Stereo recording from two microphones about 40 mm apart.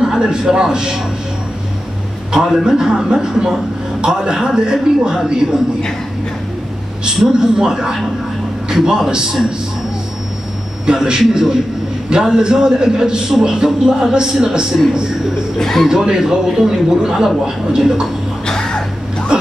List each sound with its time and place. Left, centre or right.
0.0 s a man's voice: centre
2.3 s a man's voice: centre
7.1 s a man's voice: centre
11.1 s a man's voice: centre
15.6 s speech: centre
15.9 s a man's voice: centre
18.4 s a sound: centre